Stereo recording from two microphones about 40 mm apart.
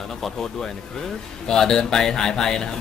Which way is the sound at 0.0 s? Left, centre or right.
Centre.